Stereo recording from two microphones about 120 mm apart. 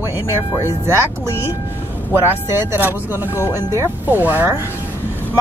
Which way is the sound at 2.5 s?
20° right (ahead or behind).